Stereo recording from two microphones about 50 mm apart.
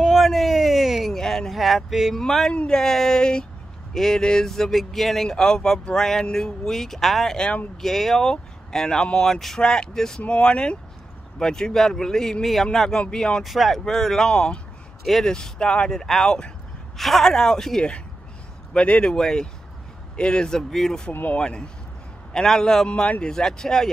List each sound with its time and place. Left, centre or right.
0.0 s a sound: centre
1.1 s speech: centre
2.1 s speech: centre
2.5 s speech: left
2.8 s speech: centre
10.2 s speech: left
13.4 s speech: centre
15.0 s speech: centre
15.3 s speech: centre
15.9 s speech: centre
16.9 s speech: centre
21.1 s speech: left
21.4 s speech: centre